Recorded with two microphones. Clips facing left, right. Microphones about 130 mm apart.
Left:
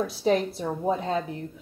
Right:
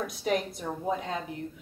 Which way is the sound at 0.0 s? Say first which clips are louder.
Left 6 dB; 30° left (ahead or behind).